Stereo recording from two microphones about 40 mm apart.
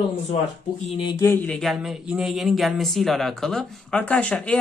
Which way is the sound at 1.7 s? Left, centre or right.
Centre.